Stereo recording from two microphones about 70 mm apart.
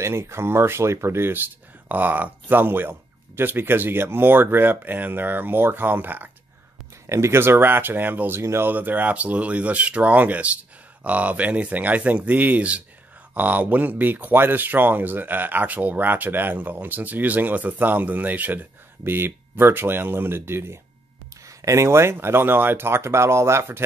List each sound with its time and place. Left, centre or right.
0.0 s speech: right
7.1 s speech: right
8.4 s speech: right
8.6 s speech: right